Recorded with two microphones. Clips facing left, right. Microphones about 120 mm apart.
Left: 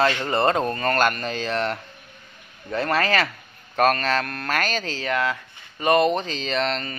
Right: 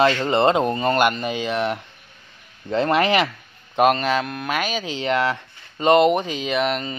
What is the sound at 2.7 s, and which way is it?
Speech, 20° right (ahead or behind).